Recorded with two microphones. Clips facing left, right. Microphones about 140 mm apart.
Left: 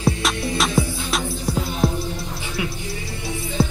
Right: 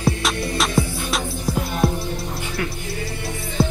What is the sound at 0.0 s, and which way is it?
Music, centre (ahead or behind).